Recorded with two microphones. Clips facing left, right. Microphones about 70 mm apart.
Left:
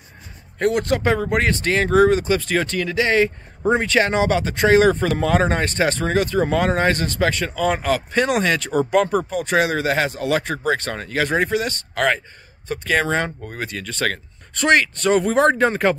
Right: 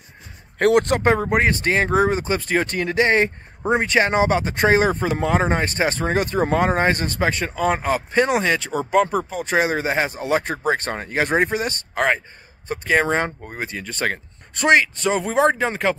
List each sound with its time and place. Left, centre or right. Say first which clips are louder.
0.6 s a man's voice: right 3 dB; right
1.1 s speech: right 1 dB; right
3.8 s speech: even; right; by 9.4 s centre
9.4 s speech: right 1 dB; right; by 16.0 s centre